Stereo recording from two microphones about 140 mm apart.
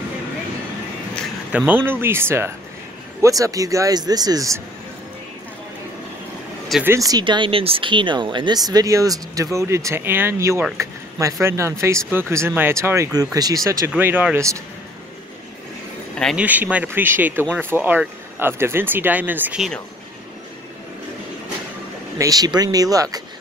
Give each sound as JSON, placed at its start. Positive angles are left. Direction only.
{"t": 1.7, "sound": "speech", "side_deg": -15}
{"t": 6.8, "sound": "speech", "side_deg": -20}
{"t": 16.3, "sound": "speech", "side_deg": -10}
{"t": 22.2, "sound": "speech", "side_deg": -25}